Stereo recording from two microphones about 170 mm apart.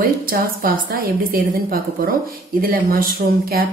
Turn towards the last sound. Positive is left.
turn(degrees=-60)  # may be behind; listen again after turning